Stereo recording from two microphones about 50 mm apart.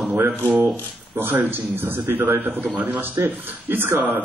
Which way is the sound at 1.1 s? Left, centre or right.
Right.